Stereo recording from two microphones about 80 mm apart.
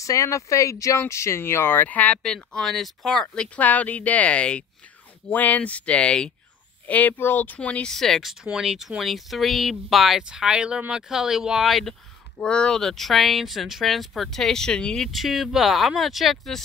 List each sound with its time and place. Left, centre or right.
0.0 s speech: left; by 2.1 s centre
2.2 s speech: centre
12.4 s speech: centre